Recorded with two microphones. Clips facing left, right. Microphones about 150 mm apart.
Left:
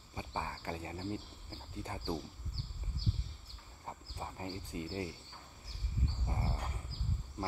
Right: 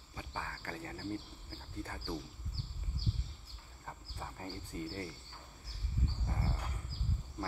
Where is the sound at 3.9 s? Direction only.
15° left (ahead or behind).